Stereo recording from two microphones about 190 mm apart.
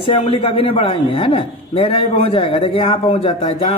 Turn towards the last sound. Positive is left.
turn(degrees=30)  # may be behind; listen again after turning